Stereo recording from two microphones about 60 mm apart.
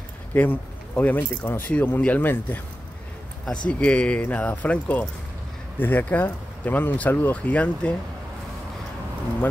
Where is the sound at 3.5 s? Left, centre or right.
Centre.